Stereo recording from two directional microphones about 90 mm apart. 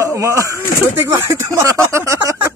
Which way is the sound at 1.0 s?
30° right (ahead or behind).